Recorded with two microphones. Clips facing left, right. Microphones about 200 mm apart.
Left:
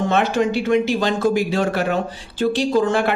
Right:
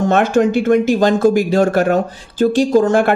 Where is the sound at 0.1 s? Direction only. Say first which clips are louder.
Right 6 dB; 50° right (ahead or behind).